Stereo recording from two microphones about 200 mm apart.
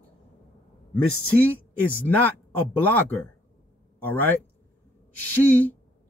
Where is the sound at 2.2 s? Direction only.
10° left (ahead or behind).